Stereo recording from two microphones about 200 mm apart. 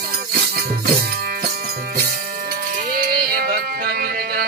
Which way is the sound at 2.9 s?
50° right (ahead or behind).